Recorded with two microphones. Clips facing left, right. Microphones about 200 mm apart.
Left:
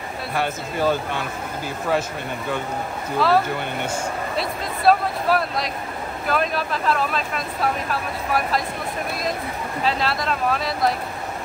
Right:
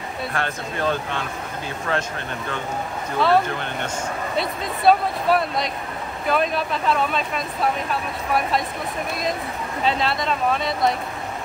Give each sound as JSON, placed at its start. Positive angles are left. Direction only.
{"t": 0.3, "sound": "speech", "side_deg": 5}
{"t": 3.2, "sound": "speech", "side_deg": 0}
{"t": 9.8, "sound": "speech", "side_deg": 0}